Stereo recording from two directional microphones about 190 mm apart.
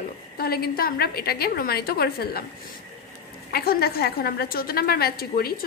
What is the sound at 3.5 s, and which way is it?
A woman's voice, 55° left (ahead or behind).